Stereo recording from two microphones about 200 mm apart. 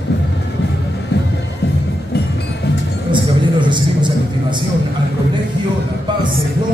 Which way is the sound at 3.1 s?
25° right (ahead or behind).